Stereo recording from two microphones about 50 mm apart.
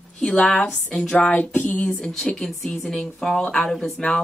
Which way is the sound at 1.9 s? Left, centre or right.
Centre.